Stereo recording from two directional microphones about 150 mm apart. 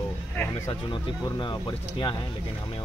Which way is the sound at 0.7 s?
30° left (ahead or behind).